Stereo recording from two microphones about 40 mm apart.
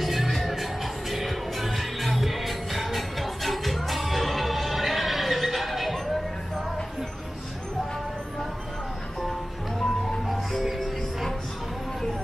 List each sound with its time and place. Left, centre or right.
0.0 s music: centre
9.8 s music: centre